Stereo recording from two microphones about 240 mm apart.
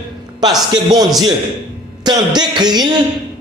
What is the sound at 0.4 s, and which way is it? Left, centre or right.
A man's voice, centre.